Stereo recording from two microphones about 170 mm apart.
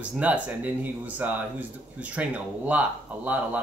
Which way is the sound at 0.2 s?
10° right (ahead or behind).